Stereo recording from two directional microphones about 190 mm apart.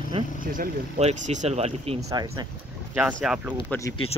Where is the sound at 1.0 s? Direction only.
40° right (ahead or behind).